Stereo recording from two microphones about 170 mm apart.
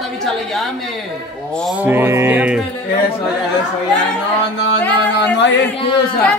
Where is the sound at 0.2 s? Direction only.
Centre (ahead or behind).